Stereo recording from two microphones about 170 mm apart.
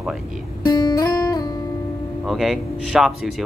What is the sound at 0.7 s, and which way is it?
Music, 25° left (ahead or behind).